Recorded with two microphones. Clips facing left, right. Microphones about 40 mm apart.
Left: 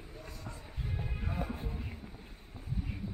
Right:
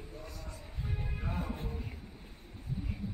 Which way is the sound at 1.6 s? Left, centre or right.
Centre.